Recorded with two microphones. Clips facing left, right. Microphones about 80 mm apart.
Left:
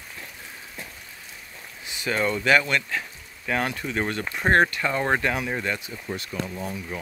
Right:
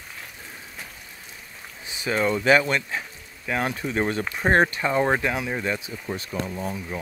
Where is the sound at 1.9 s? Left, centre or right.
Right.